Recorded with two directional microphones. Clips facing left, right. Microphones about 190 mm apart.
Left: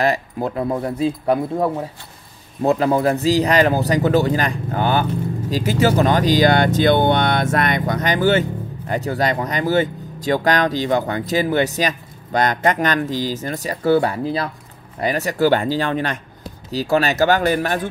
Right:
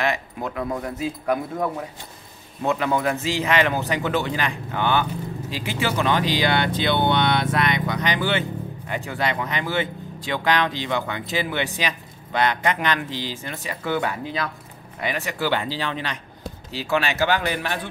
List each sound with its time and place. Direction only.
0.0 s speech: 35° left (ahead or behind)